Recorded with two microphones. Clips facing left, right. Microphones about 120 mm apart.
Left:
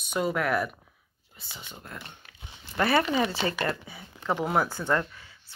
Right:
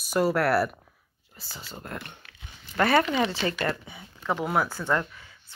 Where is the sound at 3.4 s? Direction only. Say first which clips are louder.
Right 1 dB; 30° left (ahead or behind).